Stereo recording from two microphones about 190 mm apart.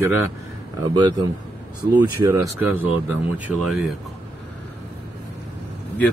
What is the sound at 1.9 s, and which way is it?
Speech, 20° right (ahead or behind).